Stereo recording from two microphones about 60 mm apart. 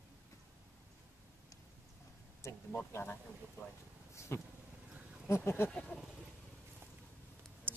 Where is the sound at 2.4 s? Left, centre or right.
Left.